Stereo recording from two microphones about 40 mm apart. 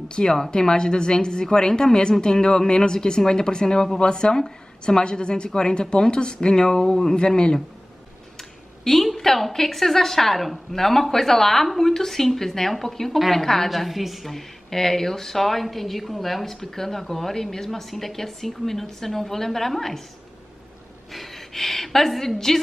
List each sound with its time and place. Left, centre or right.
0.1 s a woman's voice: centre
8.4 s a woman's voice: centre
13.7 s a woman's voice: centre
21.1 s a woman's voice: centre